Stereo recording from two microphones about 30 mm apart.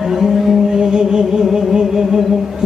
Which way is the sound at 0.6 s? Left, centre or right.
Centre.